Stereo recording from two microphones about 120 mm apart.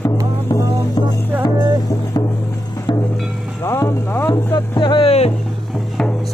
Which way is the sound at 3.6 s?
20° left (ahead or behind).